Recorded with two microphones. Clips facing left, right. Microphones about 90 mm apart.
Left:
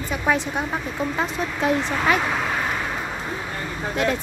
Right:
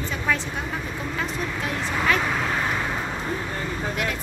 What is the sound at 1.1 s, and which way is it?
Vehicle, 20° left (ahead or behind).